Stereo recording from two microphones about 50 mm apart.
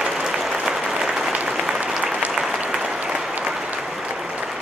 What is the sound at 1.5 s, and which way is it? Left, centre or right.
Applause, centre.